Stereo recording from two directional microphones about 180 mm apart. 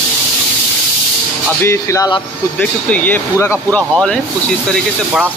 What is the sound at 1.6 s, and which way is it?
Speech, 15° left (ahead or behind).